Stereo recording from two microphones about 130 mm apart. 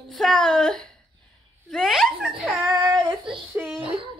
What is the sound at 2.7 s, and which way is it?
Child singing, 30° right (ahead or behind).